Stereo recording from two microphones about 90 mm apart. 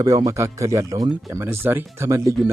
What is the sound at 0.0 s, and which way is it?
Speech, 40° right (ahead or behind).